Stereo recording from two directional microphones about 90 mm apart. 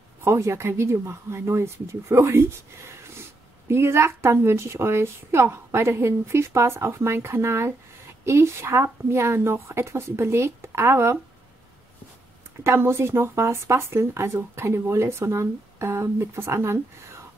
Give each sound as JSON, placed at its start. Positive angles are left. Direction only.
{"t": 0.2, "sound": "speech", "side_deg": -30}
{"t": 12.6, "sound": "speech", "side_deg": -30}